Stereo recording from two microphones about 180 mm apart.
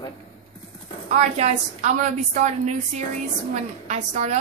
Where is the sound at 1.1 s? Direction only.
40° right (ahead or behind).